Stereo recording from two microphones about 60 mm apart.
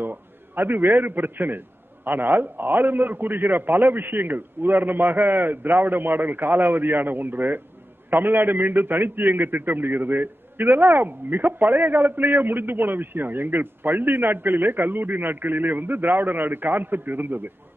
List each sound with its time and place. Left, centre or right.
0.0 s a man's voice: right